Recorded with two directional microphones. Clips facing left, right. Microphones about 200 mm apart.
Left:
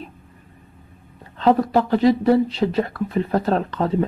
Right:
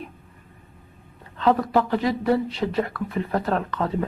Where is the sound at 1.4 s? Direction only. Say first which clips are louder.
Left 3 dB; 30° left (ahead or behind).